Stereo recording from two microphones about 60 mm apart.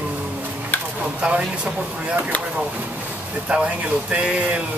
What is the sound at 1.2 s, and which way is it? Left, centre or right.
Speech, centre.